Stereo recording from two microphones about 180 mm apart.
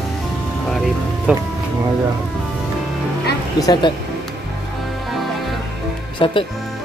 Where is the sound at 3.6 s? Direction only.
25° left (ahead or behind).